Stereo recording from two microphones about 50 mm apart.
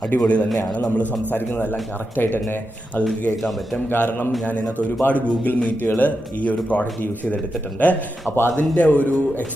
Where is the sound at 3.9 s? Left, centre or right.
Left.